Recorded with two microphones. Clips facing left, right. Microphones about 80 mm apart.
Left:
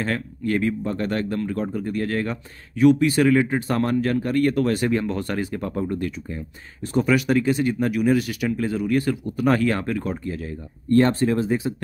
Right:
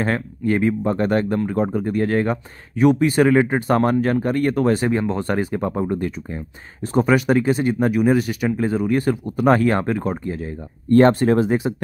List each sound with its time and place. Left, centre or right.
0.0 s speech: right
11.1 s speech: right